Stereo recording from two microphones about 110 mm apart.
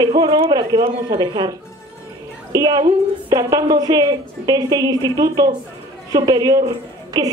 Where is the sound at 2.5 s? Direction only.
35° right (ahead or behind).